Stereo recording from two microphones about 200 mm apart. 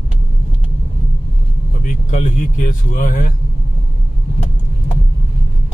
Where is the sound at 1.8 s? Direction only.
40° left (ahead or behind).